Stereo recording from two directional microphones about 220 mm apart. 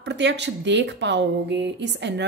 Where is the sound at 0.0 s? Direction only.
50° right (ahead or behind).